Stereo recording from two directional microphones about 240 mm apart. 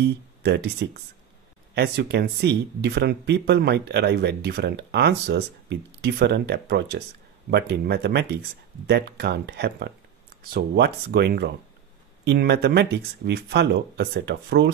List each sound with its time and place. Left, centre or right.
0.4 s speech: right